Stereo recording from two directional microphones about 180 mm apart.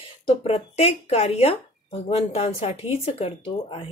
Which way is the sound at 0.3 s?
35° left (ahead or behind).